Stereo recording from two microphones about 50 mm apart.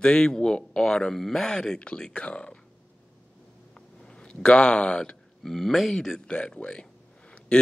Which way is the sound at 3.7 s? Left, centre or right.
Centre.